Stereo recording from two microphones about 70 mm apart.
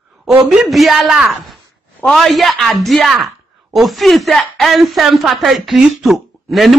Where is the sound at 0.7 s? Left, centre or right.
Centre.